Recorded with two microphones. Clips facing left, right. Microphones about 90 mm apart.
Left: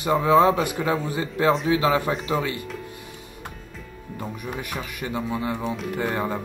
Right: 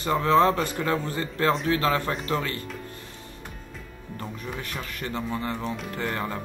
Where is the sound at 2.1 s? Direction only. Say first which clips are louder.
Left 3 dB; 5° left (ahead or behind).